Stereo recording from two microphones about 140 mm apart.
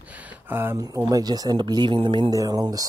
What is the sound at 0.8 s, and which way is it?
Speech, 25° right (ahead or behind).